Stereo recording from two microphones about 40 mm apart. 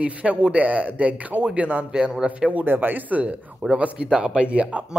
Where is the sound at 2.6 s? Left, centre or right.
Right.